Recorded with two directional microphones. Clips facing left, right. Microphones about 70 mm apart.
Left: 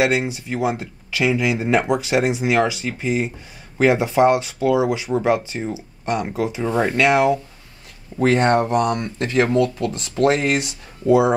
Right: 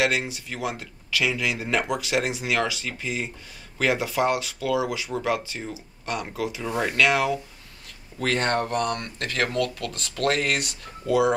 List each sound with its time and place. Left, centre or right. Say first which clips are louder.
0.0 s speech: left 5 dB; left